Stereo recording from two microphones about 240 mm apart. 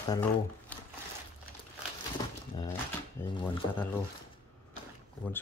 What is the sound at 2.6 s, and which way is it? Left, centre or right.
Speech, centre.